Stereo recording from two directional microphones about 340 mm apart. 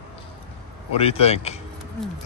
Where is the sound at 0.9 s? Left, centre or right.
Centre.